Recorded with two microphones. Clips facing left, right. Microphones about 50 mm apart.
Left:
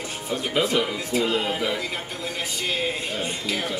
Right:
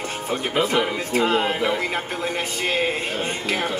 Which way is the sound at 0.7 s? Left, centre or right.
Right.